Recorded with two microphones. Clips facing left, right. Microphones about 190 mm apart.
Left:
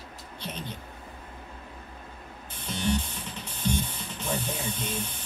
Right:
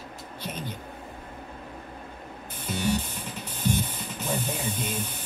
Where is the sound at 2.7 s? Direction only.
10° right (ahead or behind).